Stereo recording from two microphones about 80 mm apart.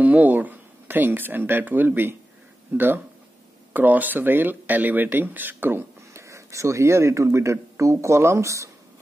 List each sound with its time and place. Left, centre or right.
0.0 s speech: right
3.7 s speech: right